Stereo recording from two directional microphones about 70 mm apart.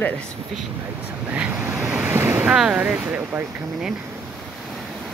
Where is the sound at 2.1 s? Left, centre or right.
Right.